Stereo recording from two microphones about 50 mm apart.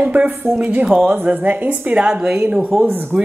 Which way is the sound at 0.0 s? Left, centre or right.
Right.